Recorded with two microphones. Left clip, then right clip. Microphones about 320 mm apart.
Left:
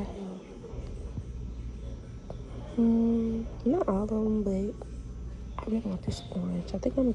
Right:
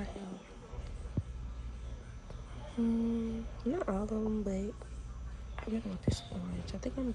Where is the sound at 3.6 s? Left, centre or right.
Centre.